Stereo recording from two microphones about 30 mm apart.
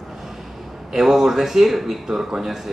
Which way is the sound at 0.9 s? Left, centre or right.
Centre.